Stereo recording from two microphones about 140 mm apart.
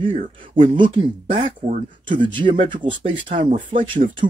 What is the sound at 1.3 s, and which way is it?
Speech, 50° right (ahead or behind).